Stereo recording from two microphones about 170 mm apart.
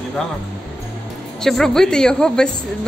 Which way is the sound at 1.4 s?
5° left (ahead or behind).